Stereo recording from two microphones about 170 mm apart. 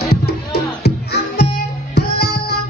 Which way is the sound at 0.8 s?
75° left (ahead or behind).